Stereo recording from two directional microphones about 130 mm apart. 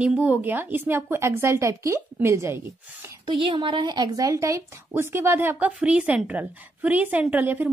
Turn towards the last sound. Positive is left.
turn(degrees=-15)  # may be behind; listen again after turning